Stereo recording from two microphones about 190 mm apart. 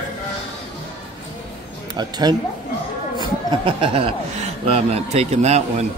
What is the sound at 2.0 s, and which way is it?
Speech, 20° right (ahead or behind).